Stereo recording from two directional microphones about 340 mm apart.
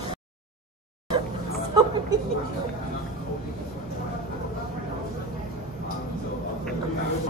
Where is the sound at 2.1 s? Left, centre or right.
Centre.